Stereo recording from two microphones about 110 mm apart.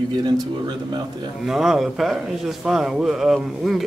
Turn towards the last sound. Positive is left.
turn(degrees=0)  # may be behind; listen again after turning